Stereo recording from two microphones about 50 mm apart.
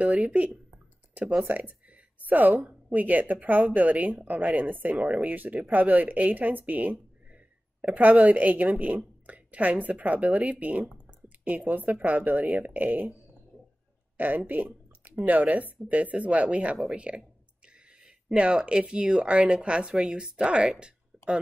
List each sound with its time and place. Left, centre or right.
0.0 s a woman's voice: right